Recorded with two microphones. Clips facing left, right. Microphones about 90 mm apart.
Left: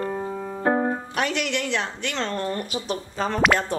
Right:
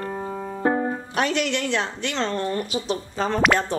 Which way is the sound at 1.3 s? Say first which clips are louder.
Right 2 dB; 5° left (ahead or behind).